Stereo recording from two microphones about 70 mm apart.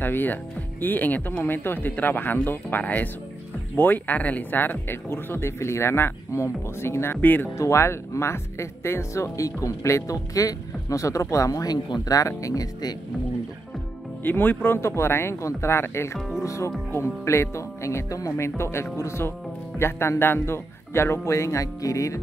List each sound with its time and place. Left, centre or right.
0.0 s speech: left
7.5 s speech: left
14.2 s speech: left
14.8 s speech: left